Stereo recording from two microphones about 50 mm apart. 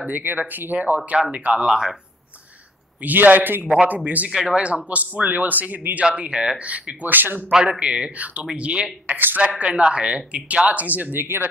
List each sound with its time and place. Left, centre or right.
0.0 s speech: right
0.7 s speech: right
1.5 s speech: centre
3.0 s speech: right
4.3 s speech: centre; by 6.0 s right
6.0 s speech: right
7.8 s speech: right
9.0 s speech: right
9.7 s speech: centre; by 11.4 s right